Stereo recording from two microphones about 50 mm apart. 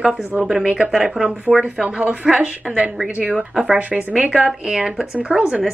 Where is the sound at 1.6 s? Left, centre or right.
Right.